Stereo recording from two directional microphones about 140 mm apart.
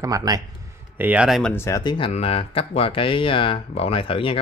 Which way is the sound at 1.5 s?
20° left (ahead or behind).